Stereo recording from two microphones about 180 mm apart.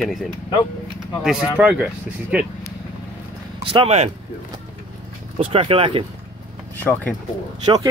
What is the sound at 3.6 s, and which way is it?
Speech, 35° right (ahead or behind).